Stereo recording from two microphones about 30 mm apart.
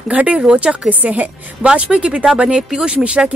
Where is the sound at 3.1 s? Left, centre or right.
Right.